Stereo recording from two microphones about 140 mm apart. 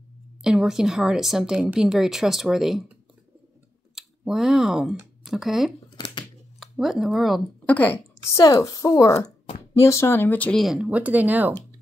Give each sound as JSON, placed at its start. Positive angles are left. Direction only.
{"t": 0.4, "sound": "a woman's voice", "side_deg": -5}
{"t": 3.9, "sound": "speech", "side_deg": -5}
{"t": 5.9, "sound": "a sound", "side_deg": 35}
{"t": 6.6, "sound": "speech", "side_deg": 0}
{"t": 7.6, "sound": "a woman's voice", "side_deg": 10}
{"t": 10.6, "sound": "speech", "side_deg": -5}